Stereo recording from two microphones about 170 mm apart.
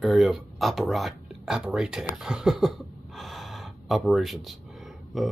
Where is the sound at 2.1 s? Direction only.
5° right (ahead or behind).